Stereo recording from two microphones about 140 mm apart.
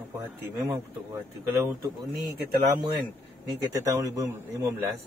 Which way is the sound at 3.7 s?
25° right (ahead or behind).